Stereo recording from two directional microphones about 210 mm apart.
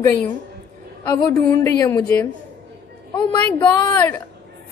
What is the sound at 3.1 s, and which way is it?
A woman's voice, 20° left (ahead or behind).